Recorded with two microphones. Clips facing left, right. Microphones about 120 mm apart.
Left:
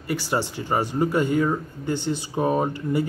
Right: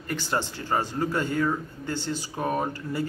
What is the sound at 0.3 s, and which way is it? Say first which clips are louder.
A man's voice: left 2 dB; 15° left (ahead or behind).